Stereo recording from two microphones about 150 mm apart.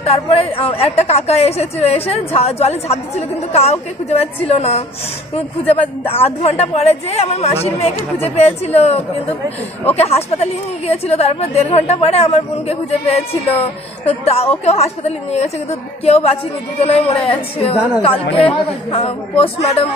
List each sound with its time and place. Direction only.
0.0 s a woman's voice: 40° left (ahead or behind)